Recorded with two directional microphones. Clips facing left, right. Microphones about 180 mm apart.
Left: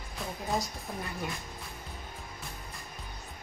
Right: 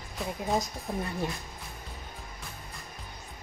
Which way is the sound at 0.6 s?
20° right (ahead or behind).